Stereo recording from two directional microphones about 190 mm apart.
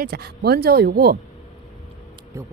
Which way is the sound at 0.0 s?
55° right (ahead or behind).